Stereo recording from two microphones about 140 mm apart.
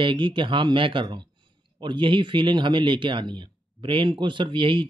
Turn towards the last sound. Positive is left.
turn(degrees=-35)  # may be behind; listen again after turning